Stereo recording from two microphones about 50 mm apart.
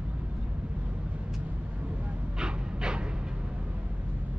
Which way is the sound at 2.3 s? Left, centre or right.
Centre.